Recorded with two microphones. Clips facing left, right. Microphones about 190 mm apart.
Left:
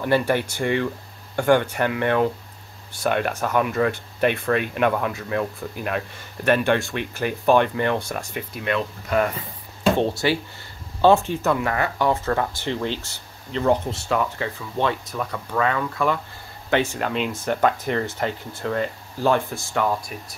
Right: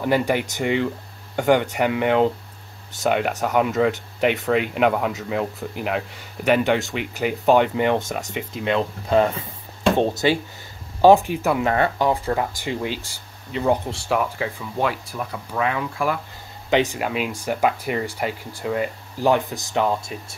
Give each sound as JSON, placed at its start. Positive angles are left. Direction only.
{"t": 0.0, "sound": "speech", "side_deg": -15}